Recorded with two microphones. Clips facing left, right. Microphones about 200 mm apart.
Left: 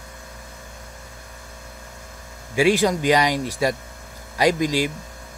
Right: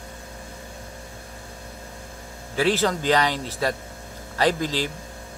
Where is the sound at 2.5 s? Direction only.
15° left (ahead or behind).